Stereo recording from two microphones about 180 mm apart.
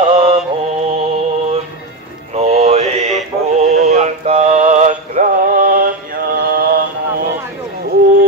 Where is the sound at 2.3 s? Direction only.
35° right (ahead or behind).